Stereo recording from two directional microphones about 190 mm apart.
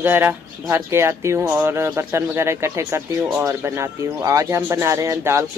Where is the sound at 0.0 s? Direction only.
10° right (ahead or behind).